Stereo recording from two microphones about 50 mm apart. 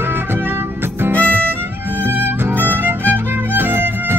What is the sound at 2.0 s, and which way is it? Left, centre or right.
Music, right.